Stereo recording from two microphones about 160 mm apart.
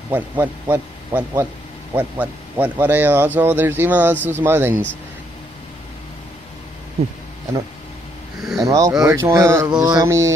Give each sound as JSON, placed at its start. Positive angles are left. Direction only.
{"t": 0.1, "sound": "speech", "side_deg": -15}
{"t": 8.6, "sound": "speech", "side_deg": -20}